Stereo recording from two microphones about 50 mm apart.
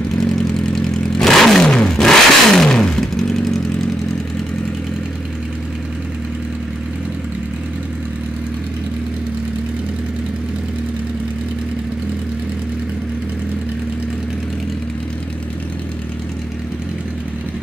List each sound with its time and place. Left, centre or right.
0.2 s vehicle: centre
2.0 s motorcycle: centre